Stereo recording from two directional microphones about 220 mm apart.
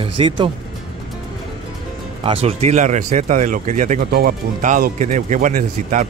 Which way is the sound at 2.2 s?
25° right (ahead or behind).